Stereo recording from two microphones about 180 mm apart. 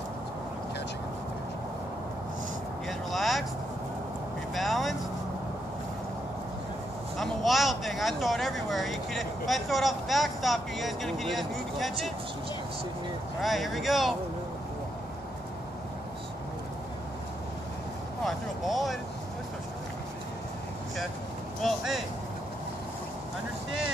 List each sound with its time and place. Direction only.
2.9 s vehicle: centre (ahead or behind)
4.6 s vehicle: centre (ahead or behind)
7.2 s speech: centre (ahead or behind)
13.4 s speech: centre (ahead or behind)
18.2 s a sound: centre (ahead or behind)
21.5 s a sound: centre (ahead or behind)